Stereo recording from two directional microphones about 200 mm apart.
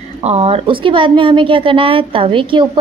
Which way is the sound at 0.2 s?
30° right (ahead or behind).